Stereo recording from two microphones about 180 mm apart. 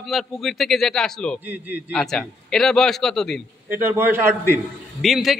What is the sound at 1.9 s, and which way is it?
A man's voice, 5° left (ahead or behind).